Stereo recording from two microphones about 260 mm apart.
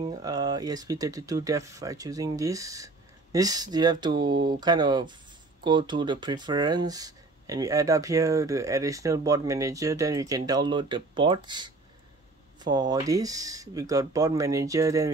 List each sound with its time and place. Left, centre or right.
0.0 s speech: centre